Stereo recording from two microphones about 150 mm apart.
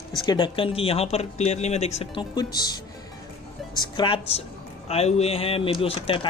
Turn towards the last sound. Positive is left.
turn(degrees=35)  # may be behind; listen again after turning